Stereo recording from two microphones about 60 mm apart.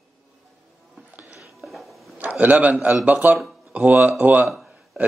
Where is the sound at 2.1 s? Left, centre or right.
Right.